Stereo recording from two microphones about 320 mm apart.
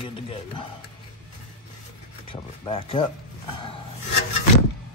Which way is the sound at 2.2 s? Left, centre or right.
Centre.